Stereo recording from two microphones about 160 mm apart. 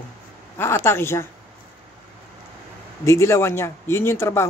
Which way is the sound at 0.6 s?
15° left (ahead or behind).